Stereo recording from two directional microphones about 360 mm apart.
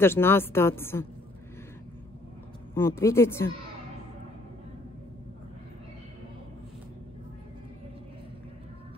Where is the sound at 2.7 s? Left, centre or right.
Centre.